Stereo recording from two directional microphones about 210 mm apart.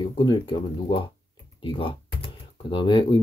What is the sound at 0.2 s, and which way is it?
Speech, 25° left (ahead or behind).